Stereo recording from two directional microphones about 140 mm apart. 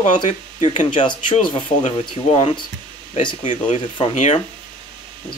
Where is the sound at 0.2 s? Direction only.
40° left (ahead or behind).